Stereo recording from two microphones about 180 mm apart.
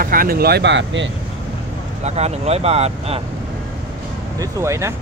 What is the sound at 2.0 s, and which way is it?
Speech, 35° right (ahead or behind).